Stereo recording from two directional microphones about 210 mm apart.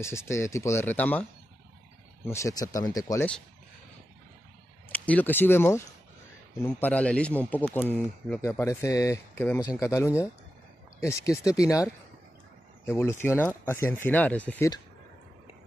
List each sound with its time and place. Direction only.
0.0 s speech: 15° left (ahead or behind)
2.2 s speech: 15° left (ahead or behind)
4.9 s speech: 5° left (ahead or behind)